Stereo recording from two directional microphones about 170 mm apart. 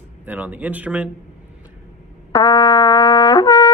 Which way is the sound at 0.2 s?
10° right (ahead or behind).